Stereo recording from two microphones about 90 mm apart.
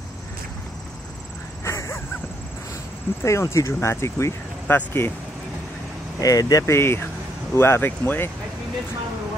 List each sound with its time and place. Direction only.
1.6 s a sound: 30° left (ahead or behind)
3.2 s speech: 30° left (ahead or behind)
6.2 s speech: 40° left (ahead or behind)
6.7 s speech: 30° left (ahead or behind)